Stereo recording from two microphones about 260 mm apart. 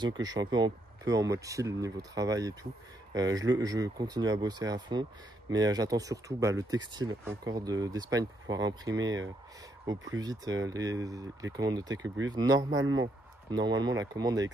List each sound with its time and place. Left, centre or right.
0.0 s speech: centre
12.7 s speech: right
13.5 s speech: centre